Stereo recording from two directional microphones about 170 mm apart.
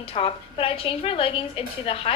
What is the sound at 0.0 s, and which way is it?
A woman's voice, 35° left (ahead or behind).